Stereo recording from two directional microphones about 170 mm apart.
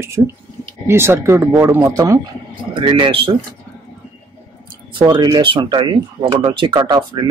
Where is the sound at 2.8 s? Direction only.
30° right (ahead or behind).